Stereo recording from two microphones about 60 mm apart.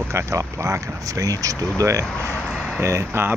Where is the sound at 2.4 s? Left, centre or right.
Centre.